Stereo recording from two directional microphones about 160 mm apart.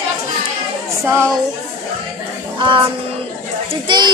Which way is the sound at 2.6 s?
35° right (ahead or behind).